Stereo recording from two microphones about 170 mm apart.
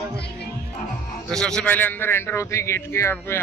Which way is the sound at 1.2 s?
5° left (ahead or behind).